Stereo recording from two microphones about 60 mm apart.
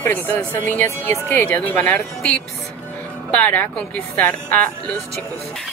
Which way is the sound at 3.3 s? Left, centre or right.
Left.